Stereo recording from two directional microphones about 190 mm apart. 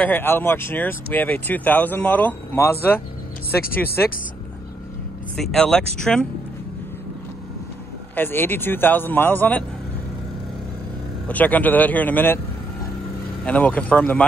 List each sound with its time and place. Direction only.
0.0 s speech: 10° left (ahead or behind)
3.6 s speech: 50° left (ahead or behind)
5.3 s speech: 5° left (ahead or behind)
8.2 s speech: 10° left (ahead or behind)
11.2 s speech: 10° left (ahead or behind)
13.5 s speech: 5° left (ahead or behind)